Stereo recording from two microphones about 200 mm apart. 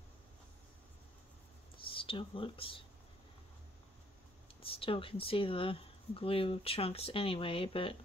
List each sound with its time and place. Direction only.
1.8 s speech: 25° left (ahead or behind)
4.6 s speech: 25° left (ahead or behind)